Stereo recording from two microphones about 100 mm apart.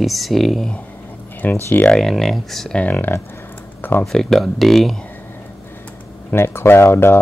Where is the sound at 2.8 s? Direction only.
15° left (ahead or behind).